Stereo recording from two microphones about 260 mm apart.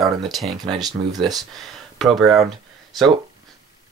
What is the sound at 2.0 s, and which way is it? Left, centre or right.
Speech, centre.